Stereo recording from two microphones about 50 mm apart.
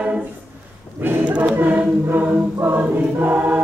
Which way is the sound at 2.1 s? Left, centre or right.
Right.